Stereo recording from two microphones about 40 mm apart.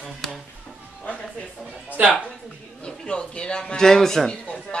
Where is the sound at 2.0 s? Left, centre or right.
Right.